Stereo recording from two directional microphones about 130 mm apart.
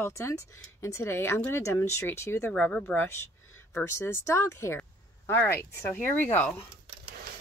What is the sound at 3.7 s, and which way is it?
Speech, 20° left (ahead or behind).